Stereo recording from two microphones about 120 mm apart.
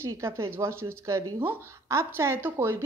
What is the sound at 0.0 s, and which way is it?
A woman's voice, 20° right (ahead or behind).